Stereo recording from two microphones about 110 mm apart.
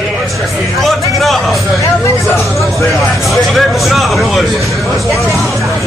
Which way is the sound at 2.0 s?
25° left (ahead or behind).